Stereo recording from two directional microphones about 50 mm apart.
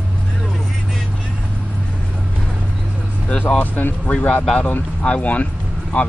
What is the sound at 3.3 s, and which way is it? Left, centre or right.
Speech, left.